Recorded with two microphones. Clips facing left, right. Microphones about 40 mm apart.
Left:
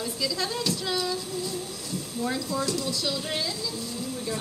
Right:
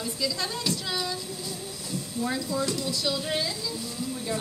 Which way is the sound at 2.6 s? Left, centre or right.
Right.